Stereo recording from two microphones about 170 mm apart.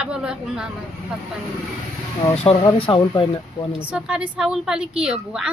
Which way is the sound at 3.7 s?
5° right (ahead or behind).